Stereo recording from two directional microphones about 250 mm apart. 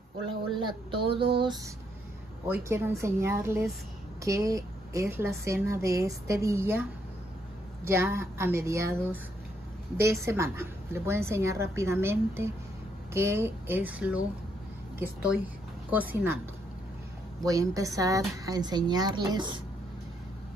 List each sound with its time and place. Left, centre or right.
0.6 s a sound: centre
2.4 s a woman's voice: centre
17.5 s a woman's voice: centre